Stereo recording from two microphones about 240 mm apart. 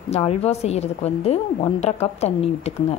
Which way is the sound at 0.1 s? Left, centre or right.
Left.